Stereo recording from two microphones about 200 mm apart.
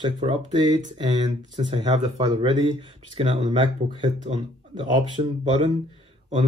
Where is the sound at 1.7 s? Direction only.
30° right (ahead or behind).